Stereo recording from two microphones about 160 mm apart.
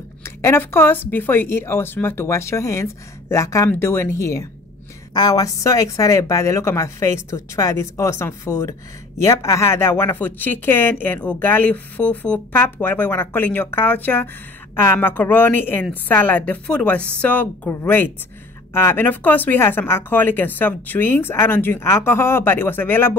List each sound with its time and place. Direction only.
0.2 s a woman's voice: 15° left (ahead or behind)